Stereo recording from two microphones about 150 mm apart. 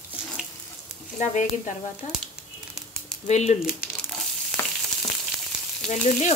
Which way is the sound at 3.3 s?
45° left (ahead or behind).